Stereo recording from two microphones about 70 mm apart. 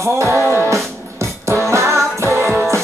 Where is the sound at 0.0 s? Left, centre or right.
Right.